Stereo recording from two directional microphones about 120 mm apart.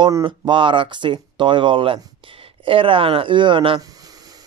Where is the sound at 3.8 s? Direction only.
30° right (ahead or behind).